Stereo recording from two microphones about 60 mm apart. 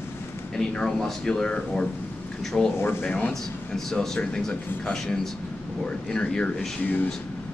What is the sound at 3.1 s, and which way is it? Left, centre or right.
Speech, left.